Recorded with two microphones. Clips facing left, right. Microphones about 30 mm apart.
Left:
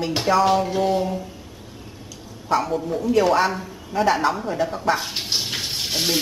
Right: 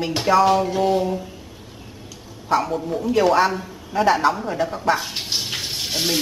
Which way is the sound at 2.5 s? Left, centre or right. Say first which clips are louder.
Right 1 dB; centre.